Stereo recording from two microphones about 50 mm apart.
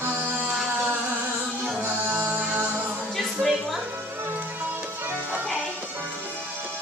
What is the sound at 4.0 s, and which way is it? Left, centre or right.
Music, right.